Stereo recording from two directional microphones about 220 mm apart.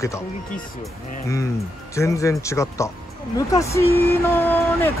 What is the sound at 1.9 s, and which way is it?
Speech, 15° left (ahead or behind).